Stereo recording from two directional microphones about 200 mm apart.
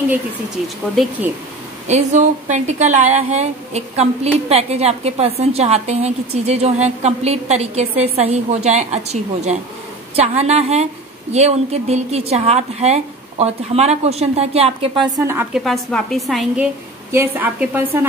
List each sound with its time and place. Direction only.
1.9 s a woman's voice: 35° right (ahead or behind)
15.1 s a woman's voice: 10° right (ahead or behind)
17.1 s a woman's voice: 10° right (ahead or behind)